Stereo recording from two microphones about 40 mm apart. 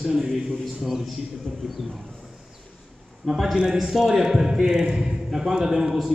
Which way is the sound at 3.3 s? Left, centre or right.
Centre.